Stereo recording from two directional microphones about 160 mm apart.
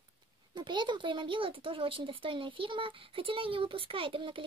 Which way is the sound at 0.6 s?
30° right (ahead or behind).